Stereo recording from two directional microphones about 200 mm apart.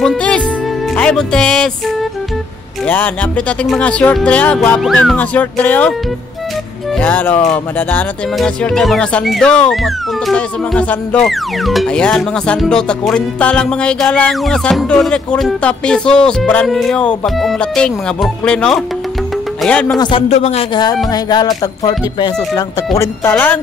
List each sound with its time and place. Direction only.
0.0 s music: 5° left (ahead or behind)
0.9 s speech: 5° left (ahead or behind)
2.9 s speech: 5° left (ahead or behind)
7.0 s speech: 10° left (ahead or behind)
20.0 s speech: 25° left (ahead or behind); by 23.6 s 10° left (ahead or behind)